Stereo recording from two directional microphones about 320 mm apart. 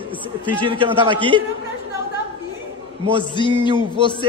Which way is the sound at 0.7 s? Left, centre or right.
Centre.